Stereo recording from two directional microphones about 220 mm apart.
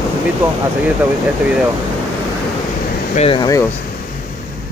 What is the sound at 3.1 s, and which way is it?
Speech, 25° left (ahead or behind).